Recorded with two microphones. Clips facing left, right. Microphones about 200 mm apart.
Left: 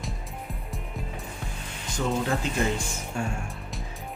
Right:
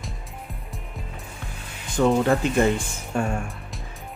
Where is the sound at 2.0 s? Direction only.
70° right (ahead or behind).